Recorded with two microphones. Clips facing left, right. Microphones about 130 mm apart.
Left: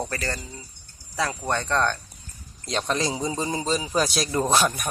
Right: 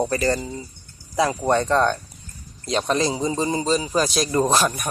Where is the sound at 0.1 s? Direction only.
20° right (ahead or behind).